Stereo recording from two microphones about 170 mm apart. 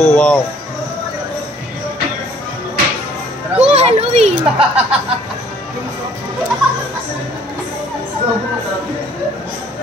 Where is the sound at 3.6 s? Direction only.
40° right (ahead or behind).